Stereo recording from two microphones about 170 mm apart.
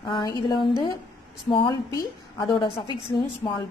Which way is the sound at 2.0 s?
30° left (ahead or behind).